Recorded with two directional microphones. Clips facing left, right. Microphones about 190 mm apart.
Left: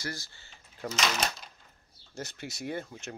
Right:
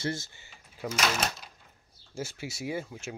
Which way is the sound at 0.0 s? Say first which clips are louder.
Right 6 dB; 25° right (ahead or behind).